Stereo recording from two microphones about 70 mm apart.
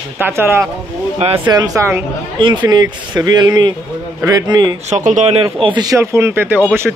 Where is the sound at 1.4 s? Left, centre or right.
Right.